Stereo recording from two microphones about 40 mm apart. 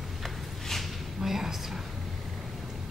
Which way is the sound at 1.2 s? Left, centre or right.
Centre.